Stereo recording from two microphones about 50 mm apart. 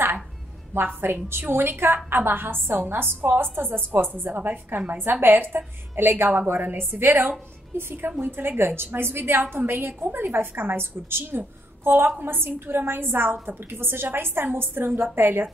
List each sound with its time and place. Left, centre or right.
0.7 s a woman's voice: right